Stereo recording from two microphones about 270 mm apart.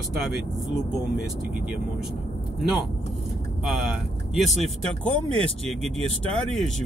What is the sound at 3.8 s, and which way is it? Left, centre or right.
Speech, centre.